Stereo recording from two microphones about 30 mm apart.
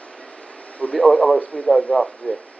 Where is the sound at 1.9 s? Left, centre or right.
Left.